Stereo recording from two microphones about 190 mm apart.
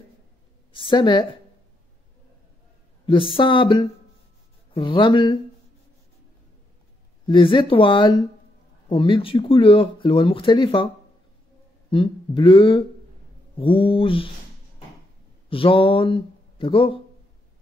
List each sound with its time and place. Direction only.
0.7 s a woman's voice: 25° left (ahead or behind)
3.1 s speech: 25° left (ahead or behind)
7.2 s speech: 25° left (ahead or behind)
11.9 s speech: 25° left (ahead or behind)
15.5 s speech: 30° left (ahead or behind)